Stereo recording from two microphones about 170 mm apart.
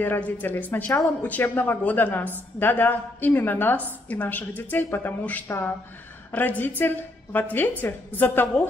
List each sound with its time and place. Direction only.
0.0 s speech: 10° left (ahead or behind)